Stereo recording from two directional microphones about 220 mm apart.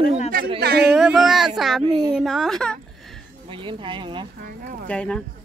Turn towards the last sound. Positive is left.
turn(degrees=5)  # may be behind; listen again after turning